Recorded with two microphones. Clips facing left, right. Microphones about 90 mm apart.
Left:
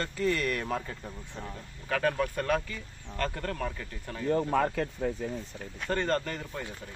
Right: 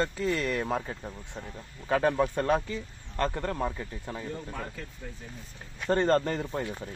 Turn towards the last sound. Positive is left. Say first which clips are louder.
# right 5 dB
turn(degrees=-30)  # may be behind; listen again after turning